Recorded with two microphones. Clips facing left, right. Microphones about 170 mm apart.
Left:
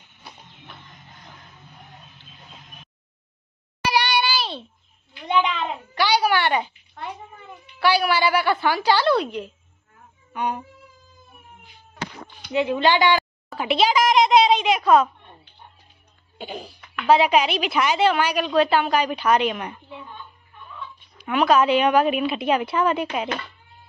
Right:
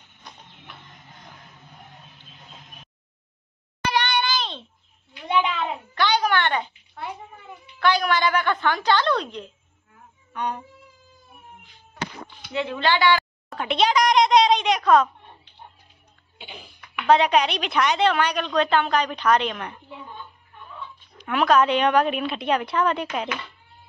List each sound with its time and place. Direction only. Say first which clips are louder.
3.9 s a sound: left 2 dB; 10° left (ahead or behind)
5.1 s a child's voice: left 1 dB; 5° right (ahead or behind)
5.9 s a sound: left 2 dB; 10° left (ahead or behind)
7.8 s a woman's voice: left 1 dB; 10° left (ahead or behind)
12.5 s a woman's voice: left 4 dB; 15° left (ahead or behind)
13.5 s speech: left 1 dB; 5° left (ahead or behind)
16.3 s cough: left 9 dB; 40° left (ahead or behind)
17.0 s a woman's voice: left 1 dB; 5° left (ahead or behind)
21.2 s a woman's voice: left 1 dB; 5° left (ahead or behind)